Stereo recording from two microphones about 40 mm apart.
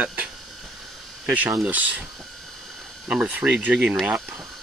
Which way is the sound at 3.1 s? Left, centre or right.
Right.